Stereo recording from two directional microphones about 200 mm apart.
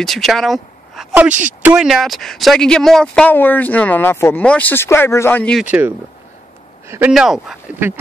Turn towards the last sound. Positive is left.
turn(degrees=0)  # may be behind; listen again after turning